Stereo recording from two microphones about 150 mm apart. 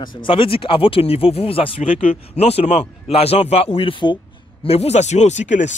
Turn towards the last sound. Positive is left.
turn(degrees=55)  # may be behind; listen again after turning